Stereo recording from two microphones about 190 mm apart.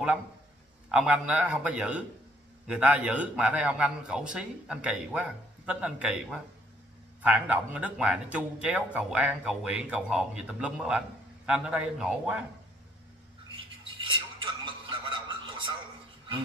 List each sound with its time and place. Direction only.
0.9 s a man's voice: 5° right (ahead or behind)
14.1 s music: 25° right (ahead or behind)